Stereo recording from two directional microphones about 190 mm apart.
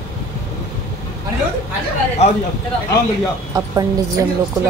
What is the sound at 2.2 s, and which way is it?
Speech, 35° left (ahead or behind).